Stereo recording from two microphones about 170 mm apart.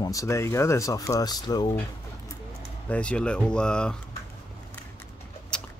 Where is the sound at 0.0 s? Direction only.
20° left (ahead or behind).